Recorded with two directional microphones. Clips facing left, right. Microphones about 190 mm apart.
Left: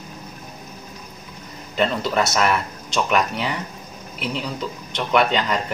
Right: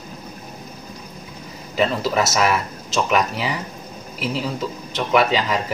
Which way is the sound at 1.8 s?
5° right (ahead or behind).